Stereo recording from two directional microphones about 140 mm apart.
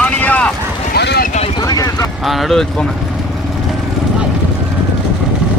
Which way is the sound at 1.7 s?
25° left (ahead or behind).